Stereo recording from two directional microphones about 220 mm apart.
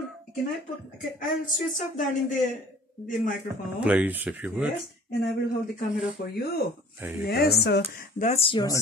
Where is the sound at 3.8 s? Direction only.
5° right (ahead or behind).